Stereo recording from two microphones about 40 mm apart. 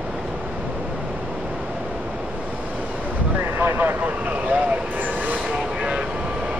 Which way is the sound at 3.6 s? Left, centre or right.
Right.